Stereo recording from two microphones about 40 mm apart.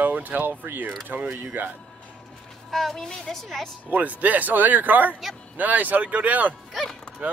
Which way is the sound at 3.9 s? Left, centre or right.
Right.